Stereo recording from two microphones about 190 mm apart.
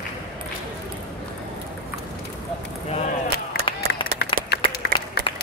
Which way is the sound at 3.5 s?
55° left (ahead or behind).